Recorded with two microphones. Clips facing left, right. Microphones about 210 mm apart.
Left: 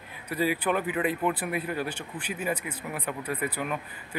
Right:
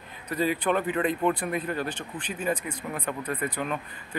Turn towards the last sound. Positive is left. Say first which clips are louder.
# right 1 dB
turn(degrees=10)  # may be behind; listen again after turning